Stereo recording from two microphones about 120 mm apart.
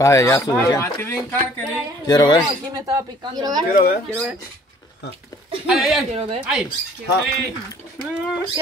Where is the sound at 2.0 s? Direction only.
35° left (ahead or behind).